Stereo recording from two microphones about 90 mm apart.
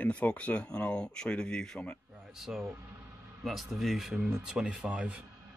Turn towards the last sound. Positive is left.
turn(degrees=-10)  # may be behind; listen again after turning